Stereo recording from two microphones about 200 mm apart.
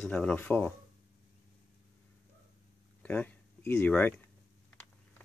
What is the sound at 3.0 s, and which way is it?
Speech, 10° left (ahead or behind).